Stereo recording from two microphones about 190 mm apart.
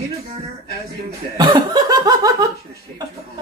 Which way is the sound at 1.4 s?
20° right (ahead or behind).